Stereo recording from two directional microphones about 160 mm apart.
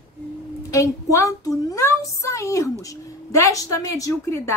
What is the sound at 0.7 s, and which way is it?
A woman's voice, 20° left (ahead or behind).